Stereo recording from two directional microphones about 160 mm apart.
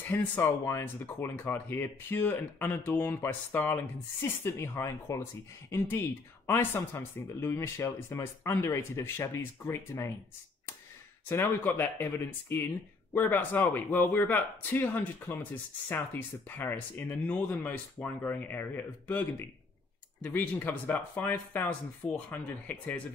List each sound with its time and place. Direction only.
0.0 s speech: 15° left (ahead or behind)
11.2 s speech: 15° left (ahead or behind)